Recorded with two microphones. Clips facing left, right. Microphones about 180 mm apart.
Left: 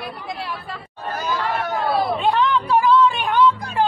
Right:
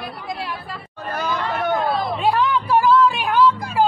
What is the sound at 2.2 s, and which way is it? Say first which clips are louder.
Music: even; 5° right (ahead or behind).